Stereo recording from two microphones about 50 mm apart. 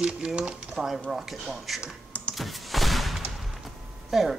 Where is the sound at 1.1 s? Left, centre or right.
Centre.